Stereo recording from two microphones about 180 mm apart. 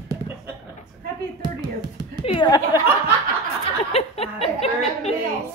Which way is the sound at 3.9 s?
35° left (ahead or behind).